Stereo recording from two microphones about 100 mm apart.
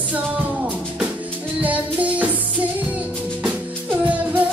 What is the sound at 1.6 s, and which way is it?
Music, 15° right (ahead or behind).